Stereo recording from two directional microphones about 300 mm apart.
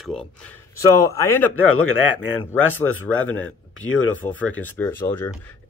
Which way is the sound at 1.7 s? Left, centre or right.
Left.